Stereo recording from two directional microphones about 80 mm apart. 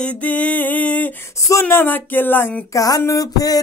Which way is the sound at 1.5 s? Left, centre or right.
Left.